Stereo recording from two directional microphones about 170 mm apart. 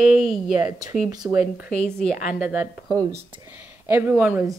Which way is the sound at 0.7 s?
20° right (ahead or behind).